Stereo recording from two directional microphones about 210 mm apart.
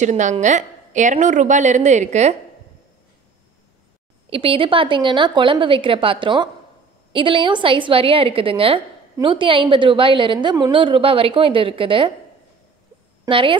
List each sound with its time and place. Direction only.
0.0 s a woman's voice: 35° right (ahead or behind)
4.3 s a woman's voice: 25° right (ahead or behind)
13.2 s a woman's voice: 25° right (ahead or behind)